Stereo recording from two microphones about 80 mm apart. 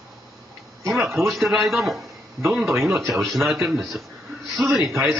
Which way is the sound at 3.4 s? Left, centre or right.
Right.